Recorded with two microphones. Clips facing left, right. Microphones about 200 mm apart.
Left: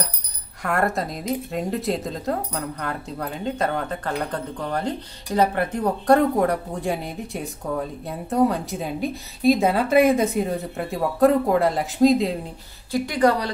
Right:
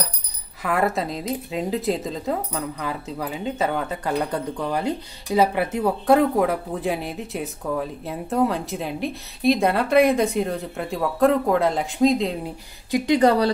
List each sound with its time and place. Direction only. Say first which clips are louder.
0.6 s a woman's voice: right 1 dB; centre (ahead or behind)
12.9 s speech: right 2 dB; 20° right (ahead or behind)